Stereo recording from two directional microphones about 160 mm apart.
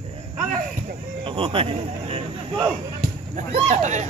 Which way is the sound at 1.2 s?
35° right (ahead or behind).